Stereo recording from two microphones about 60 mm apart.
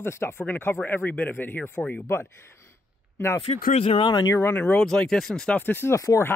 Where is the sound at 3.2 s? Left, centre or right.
Left.